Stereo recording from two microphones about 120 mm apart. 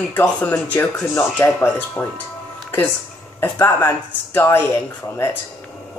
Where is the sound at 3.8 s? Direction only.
20° left (ahead or behind).